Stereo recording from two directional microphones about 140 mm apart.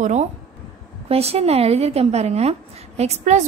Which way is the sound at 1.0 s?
45° right (ahead or behind).